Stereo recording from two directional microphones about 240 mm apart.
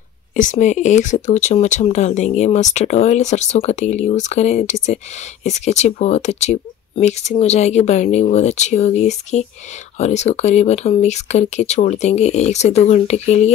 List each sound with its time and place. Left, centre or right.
0.4 s speech: left